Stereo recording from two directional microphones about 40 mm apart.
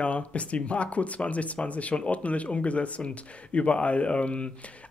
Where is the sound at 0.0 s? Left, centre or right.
Left.